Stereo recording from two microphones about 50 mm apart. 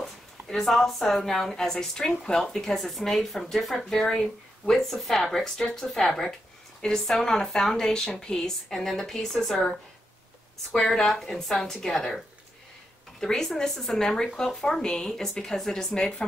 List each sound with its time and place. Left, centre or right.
0.5 s speech: centre
10.7 s speech: centre
13.2 s speech: centre